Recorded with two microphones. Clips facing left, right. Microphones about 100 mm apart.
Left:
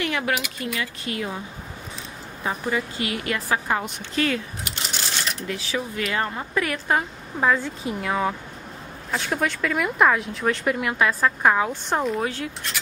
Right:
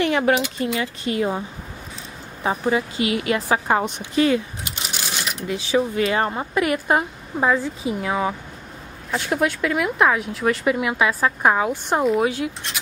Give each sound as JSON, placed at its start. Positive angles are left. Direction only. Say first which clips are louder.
{"t": 0.0, "sound": "a woman's voice", "louder": "right 6 dB", "side_deg": -30}
{"t": 2.4, "sound": "a woman's voice", "louder": "right 5 dB", "side_deg": -20}
{"t": 6.5, "sound": "a woman's voice", "louder": "right 3 dB", "side_deg": -15}